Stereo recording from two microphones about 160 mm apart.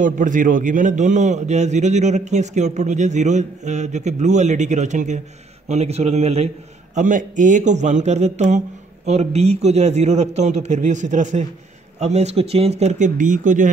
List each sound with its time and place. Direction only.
0.0 s a man's voice: 55° right (ahead or behind)
7.0 s a man's voice: 50° right (ahead or behind)